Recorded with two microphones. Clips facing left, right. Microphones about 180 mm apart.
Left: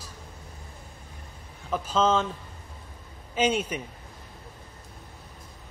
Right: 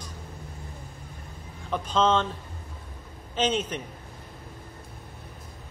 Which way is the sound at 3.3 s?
10° left (ahead or behind).